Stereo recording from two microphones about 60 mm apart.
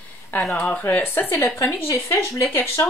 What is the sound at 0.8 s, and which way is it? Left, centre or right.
Speech, left.